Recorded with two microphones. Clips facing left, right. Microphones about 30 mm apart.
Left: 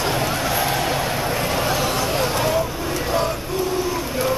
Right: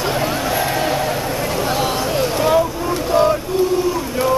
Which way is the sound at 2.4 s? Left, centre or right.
Centre.